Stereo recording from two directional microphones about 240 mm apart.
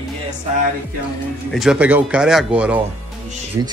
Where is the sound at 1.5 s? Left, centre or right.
Centre.